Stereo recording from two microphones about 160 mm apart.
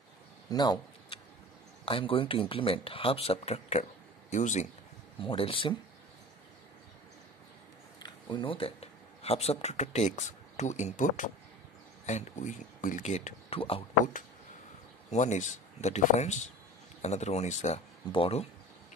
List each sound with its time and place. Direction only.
0.5 s a sound: 25° left (ahead or behind)
1.9 s speech: 35° left (ahead or behind)
5.2 s speech: 35° left (ahead or behind)
8.0 s a sound: 30° left (ahead or behind)
9.2 s speech: 40° left (ahead or behind)
15.0 s speech: 50° left (ahead or behind)